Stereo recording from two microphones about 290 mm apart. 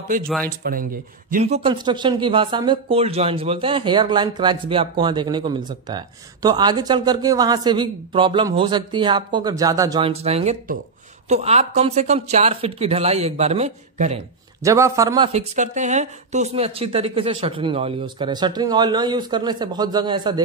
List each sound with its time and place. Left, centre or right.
0.6 s speech: right
14.6 s speech: centre